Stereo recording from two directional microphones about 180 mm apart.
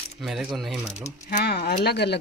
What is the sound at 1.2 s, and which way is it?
Speech, 55° left (ahead or behind).